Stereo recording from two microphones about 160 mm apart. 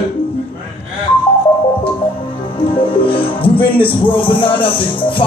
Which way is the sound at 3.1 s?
35° left (ahead or behind).